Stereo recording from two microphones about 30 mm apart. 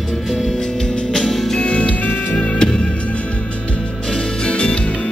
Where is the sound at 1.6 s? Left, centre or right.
Left.